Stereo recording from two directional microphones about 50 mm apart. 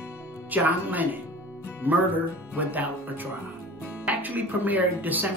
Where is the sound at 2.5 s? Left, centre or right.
Right.